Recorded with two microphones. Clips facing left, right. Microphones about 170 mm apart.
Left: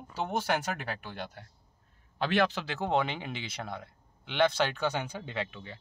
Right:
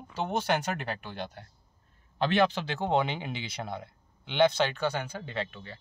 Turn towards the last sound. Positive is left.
turn(degrees=15)  # may be behind; listen again after turning